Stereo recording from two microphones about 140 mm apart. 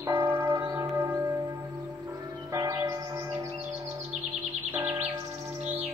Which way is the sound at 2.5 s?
25° right (ahead or behind).